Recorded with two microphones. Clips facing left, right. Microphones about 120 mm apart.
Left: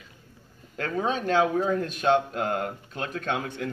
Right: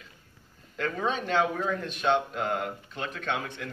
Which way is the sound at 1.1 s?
40° left (ahead or behind).